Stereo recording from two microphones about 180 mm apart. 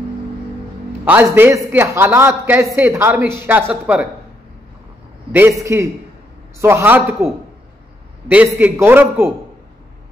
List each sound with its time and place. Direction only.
1.0 s a man's voice: 10° right (ahead or behind)
5.3 s a man's voice: 15° right (ahead or behind)
8.3 s a man's voice: 10° right (ahead or behind)